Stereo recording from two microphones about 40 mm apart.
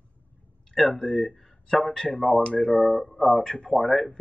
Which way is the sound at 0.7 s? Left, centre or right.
Centre.